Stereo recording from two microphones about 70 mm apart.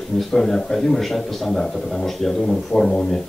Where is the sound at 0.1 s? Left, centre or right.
Centre.